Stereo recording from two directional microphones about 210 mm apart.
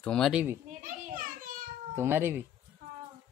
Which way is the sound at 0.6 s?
35° right (ahead or behind).